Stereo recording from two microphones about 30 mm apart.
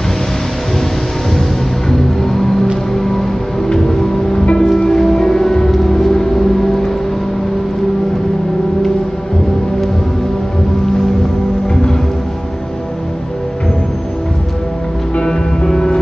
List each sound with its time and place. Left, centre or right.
1.9 s music: centre
15.1 s music: left